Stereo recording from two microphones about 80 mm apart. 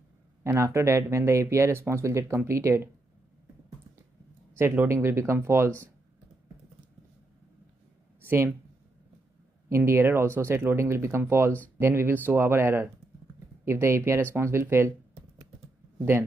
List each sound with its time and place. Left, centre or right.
0.4 s speech: right
4.6 s speech: right
8.2 s a sound: right
9.7 s speech: right